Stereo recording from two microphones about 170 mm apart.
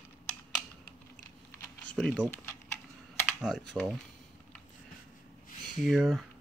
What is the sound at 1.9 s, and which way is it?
Speech, 5° left (ahead or behind).